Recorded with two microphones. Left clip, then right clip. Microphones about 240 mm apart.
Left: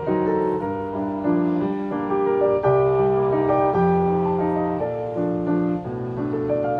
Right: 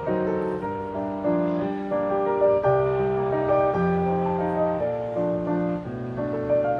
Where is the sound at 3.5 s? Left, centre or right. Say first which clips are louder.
Right 1 dB; left.